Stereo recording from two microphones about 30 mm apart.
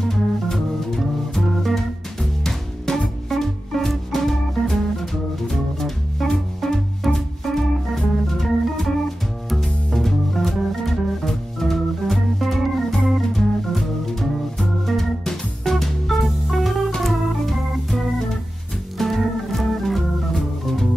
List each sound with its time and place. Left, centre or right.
0.0 s music: centre
2.1 s music: centre
3.3 s music: centre
7.4 s organ: centre
9.8 s music: centre
14.6 s organ: centre
15.7 s music: centre
17.0 s organ: centre